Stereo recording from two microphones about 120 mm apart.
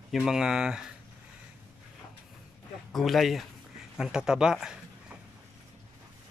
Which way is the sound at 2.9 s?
Centre (ahead or behind).